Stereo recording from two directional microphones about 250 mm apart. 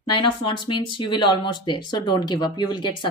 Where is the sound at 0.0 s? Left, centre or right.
Centre.